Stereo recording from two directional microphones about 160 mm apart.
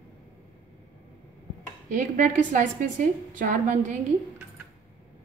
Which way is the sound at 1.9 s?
55° right (ahead or behind).